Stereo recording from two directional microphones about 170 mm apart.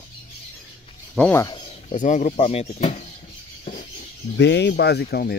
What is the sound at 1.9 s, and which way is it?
Speech, 45° left (ahead or behind).